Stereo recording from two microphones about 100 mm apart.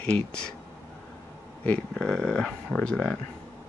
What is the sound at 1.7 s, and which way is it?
Speech, 5° left (ahead or behind).